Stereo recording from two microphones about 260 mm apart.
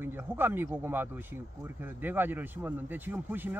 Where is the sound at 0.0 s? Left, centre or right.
Centre.